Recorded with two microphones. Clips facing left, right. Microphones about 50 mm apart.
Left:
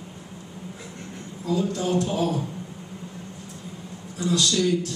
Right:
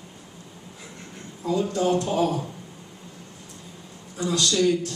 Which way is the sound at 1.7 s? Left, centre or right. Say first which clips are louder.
Right 3 dB; right.